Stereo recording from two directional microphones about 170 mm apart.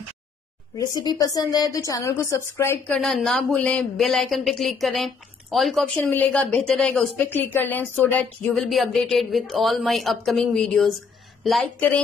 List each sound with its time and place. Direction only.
0.7 s a woman's voice: 20° left (ahead or behind)
2.9 s a woman's voice: 5° left (ahead or behind)